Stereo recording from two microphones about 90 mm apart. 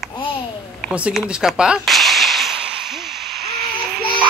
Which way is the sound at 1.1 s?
5° right (ahead or behind).